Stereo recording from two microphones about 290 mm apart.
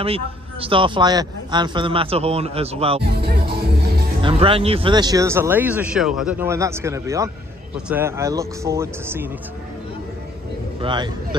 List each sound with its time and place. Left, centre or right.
0.7 s speech: centre
3.0 s music: right
4.2 s speech: centre
10.8 s speech: centre